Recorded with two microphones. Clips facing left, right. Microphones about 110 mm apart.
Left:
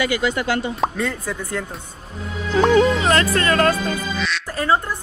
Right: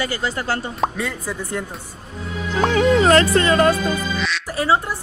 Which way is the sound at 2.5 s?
40° right (ahead or behind).